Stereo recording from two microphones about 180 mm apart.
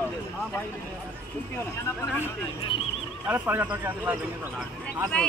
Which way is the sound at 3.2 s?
10° right (ahead or behind).